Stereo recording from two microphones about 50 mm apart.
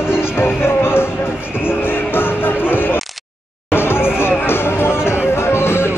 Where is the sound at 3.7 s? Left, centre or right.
Left.